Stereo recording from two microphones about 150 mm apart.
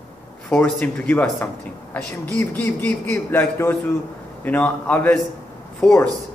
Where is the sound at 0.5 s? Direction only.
10° left (ahead or behind).